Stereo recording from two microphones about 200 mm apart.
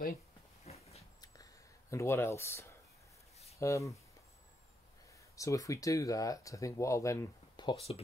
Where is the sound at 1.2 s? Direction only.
15° left (ahead or behind).